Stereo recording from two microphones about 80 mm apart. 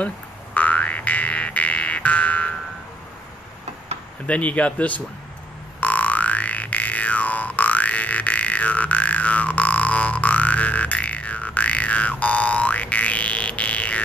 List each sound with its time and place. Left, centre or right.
0.6 s music: centre
4.3 s speech: centre
5.8 s music: centre